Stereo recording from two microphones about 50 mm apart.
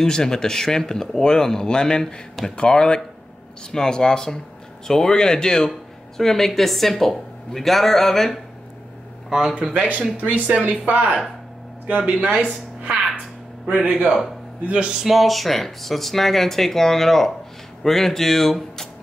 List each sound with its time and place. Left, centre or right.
0.0 s speech: centre
9.3 s speech: centre
10.1 s speech: right
12.0 s a man's voice: right
15.0 s speech: centre